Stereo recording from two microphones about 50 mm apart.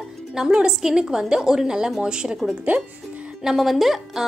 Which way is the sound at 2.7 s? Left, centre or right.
Right.